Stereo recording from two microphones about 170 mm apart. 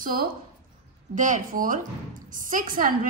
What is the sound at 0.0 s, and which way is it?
A woman's voice, 60° right (ahead or behind).